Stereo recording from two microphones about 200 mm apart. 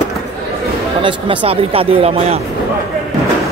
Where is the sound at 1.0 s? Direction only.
25° right (ahead or behind).